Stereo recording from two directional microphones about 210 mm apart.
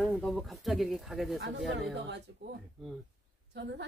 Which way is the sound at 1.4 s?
55° right (ahead or behind).